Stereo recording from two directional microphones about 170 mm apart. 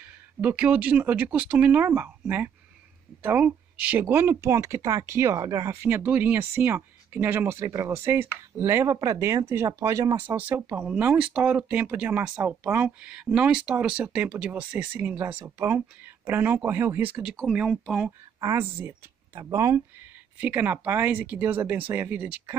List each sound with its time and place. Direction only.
0.4 s speech: 10° right (ahead or behind)
18.4 s speech: 15° right (ahead or behind)